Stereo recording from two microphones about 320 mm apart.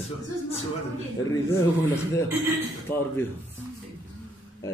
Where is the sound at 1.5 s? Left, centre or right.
Centre.